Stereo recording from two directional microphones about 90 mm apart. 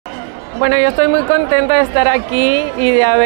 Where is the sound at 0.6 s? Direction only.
25° right (ahead or behind).